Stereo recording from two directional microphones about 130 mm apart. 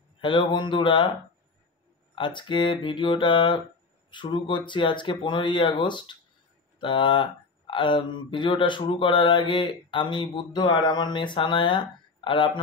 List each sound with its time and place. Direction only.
0.2 s speech: 40° left (ahead or behind)
2.1 s speech: 40° left (ahead or behind)